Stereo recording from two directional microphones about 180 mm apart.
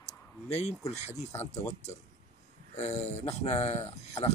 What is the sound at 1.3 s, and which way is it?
Speech, 15° left (ahead or behind).